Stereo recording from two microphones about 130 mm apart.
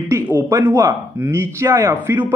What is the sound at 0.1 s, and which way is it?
Speech, 20° right (ahead or behind).